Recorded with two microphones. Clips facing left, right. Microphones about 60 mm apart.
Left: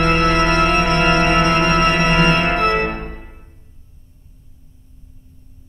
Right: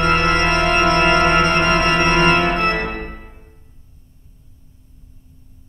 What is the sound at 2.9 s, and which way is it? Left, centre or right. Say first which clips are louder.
Music: left 1 dB; centre.